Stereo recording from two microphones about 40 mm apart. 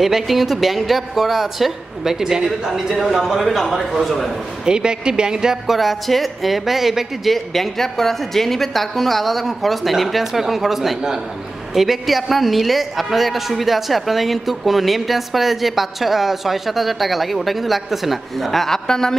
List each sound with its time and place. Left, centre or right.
0.0 s a woman's voice: centre
4.6 s a woman's voice: right
5.7 s a woman's voice: centre
18.9 s a man's voice: centre